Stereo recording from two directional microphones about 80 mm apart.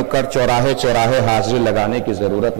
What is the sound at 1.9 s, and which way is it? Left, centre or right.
Speech, centre.